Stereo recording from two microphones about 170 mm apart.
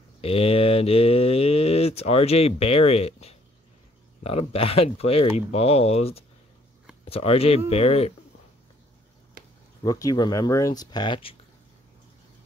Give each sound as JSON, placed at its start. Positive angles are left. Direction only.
{"t": 0.2, "sound": "speech", "side_deg": 35}
{"t": 9.8, "sound": "speech", "side_deg": 20}